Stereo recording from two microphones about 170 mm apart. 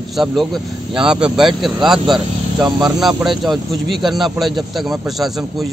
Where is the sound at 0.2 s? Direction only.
Centre (ahead or behind).